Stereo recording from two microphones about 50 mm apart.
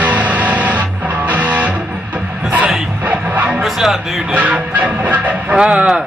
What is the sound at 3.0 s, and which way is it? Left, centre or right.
Music, right.